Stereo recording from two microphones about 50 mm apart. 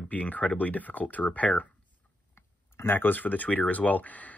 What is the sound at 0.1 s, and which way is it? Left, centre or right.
Speech, left.